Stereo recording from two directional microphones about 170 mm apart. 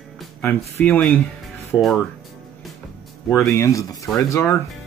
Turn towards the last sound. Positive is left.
turn(degrees=15)  # may be behind; listen again after turning